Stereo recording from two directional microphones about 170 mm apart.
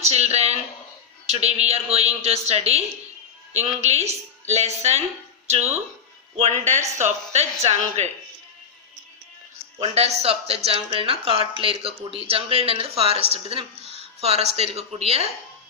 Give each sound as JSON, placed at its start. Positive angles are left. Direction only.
{"t": 0.0, "sound": "speech", "side_deg": -40}
{"t": 3.8, "sound": "speech", "side_deg": -40}
{"t": 9.8, "sound": "speech", "side_deg": -40}
{"t": 13.7, "sound": "a sound", "side_deg": 35}
{"t": 14.2, "sound": "speech", "side_deg": -40}